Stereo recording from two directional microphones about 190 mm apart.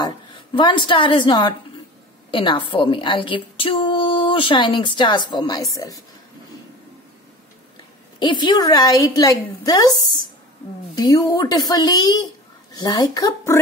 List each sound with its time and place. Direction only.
0.6 s a woman's voice: 25° left (ahead or behind)
8.2 s a woman's voice: 25° left (ahead or behind)